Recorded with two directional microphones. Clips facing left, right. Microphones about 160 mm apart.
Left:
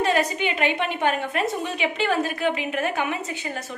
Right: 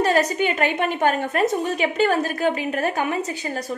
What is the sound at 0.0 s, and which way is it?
A woman's voice, 40° right (ahead or behind).